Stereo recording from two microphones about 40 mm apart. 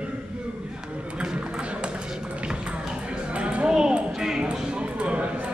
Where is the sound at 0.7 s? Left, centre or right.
Right.